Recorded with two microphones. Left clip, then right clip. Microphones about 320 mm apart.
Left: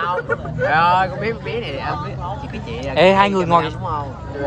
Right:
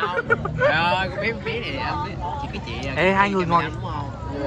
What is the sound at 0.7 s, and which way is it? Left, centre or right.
Speech, left.